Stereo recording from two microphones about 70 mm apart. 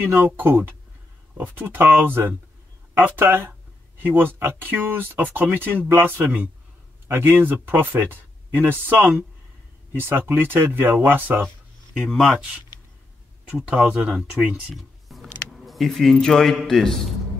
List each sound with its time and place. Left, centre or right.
0.0 s speech: right
12.0 s speech: centre
13.7 s speech: centre
14.7 s a sound: centre
16.6 s a man's voice: centre